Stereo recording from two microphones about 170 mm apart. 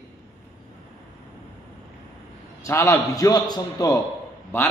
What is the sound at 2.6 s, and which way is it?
A man's voice, 15° left (ahead or behind).